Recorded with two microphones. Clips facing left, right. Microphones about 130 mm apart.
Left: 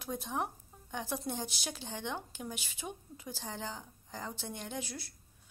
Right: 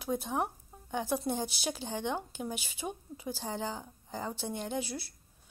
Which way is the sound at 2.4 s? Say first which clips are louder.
Right 5 dB; 25° right (ahead or behind).